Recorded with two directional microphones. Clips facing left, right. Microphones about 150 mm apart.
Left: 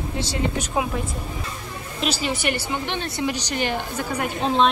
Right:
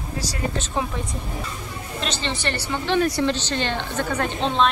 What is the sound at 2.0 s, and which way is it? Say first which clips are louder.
A woman's voice: left 3 dB; 10° left (ahead or behind).